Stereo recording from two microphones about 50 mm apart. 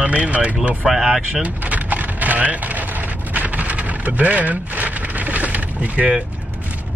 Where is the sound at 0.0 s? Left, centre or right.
Right.